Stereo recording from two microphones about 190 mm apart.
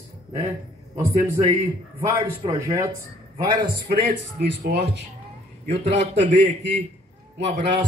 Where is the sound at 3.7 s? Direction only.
60° right (ahead or behind).